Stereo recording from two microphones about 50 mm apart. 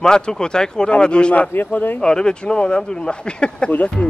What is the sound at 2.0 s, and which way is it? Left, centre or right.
Speech, centre.